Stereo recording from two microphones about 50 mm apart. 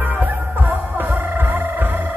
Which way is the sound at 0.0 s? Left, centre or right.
Right.